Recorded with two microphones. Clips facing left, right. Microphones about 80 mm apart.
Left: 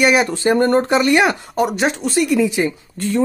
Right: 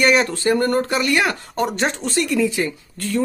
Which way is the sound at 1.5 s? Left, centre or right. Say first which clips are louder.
Left 3 dB; centre.